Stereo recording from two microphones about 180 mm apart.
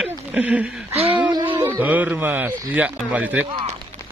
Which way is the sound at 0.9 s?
30° right (ahead or behind).